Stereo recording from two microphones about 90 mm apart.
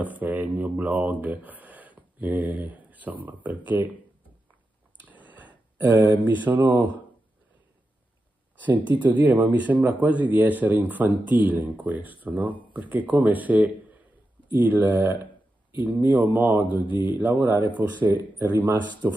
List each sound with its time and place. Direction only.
0.0 s a sound: 15° right (ahead or behind)
3.3 s speech: 20° right (ahead or behind)
5.0 s a sound: 15° right (ahead or behind)
6.4 s speech: 20° right (ahead or behind)
8.9 s speech: 20° right (ahead or behind)
16.6 s speech: 60° left (ahead or behind)
17.0 s speech: 25° right (ahead or behind)